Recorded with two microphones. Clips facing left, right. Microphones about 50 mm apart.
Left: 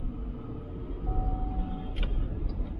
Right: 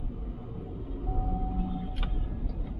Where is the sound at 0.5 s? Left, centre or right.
Left.